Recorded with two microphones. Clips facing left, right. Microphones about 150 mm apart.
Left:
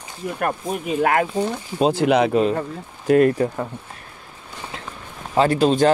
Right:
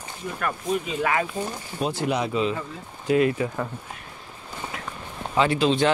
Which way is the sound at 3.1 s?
50° left (ahead or behind).